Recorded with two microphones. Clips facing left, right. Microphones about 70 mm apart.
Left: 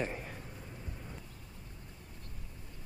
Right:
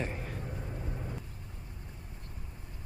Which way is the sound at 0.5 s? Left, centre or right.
Right.